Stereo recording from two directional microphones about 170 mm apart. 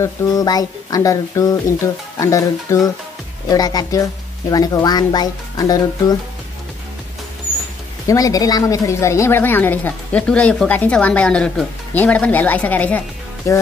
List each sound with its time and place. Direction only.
0.0 s speech: 20° left (ahead or behind)
8.1 s speech: 20° left (ahead or behind)